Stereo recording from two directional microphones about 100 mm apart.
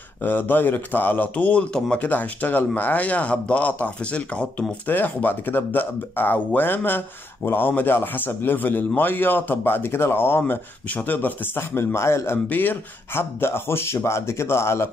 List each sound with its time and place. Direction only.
0.2 s a man's voice: 20° left (ahead or behind)